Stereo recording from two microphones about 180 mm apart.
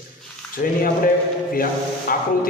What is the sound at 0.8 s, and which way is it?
A man's voice, 50° left (ahead or behind).